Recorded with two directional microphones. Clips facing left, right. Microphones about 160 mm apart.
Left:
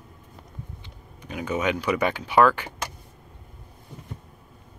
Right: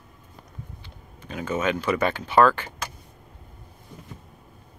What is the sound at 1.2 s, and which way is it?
Speech, 15° left (ahead or behind).